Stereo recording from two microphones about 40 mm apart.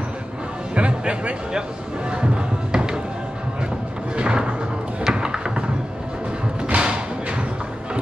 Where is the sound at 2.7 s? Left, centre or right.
Right.